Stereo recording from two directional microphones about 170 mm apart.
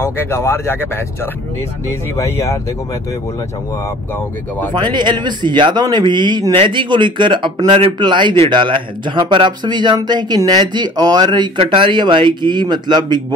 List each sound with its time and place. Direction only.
0.0 s speech: 15° left (ahead or behind)
4.7 s speech: 25° right (ahead or behind)